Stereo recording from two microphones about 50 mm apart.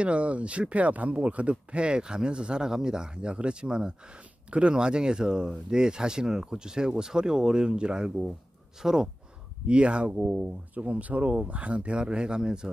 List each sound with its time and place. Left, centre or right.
0.0 s speech: right; by 9.1 s centre
9.7 s speech: right